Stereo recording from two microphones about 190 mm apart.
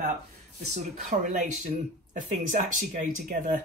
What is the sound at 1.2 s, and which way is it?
Speech, 40° right (ahead or behind).